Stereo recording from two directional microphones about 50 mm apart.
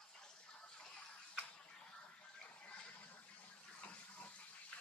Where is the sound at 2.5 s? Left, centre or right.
Left.